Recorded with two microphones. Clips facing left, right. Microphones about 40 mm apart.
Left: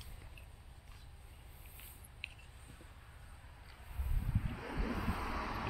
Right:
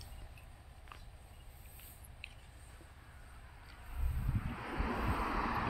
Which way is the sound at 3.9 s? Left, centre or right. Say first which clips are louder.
Even; centre.